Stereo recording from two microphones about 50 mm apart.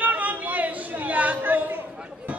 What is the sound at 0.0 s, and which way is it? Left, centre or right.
Chatter, right.